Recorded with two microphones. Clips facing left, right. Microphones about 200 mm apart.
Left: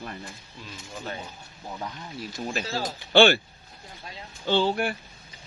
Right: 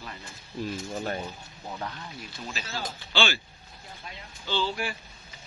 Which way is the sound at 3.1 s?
60° left (ahead or behind).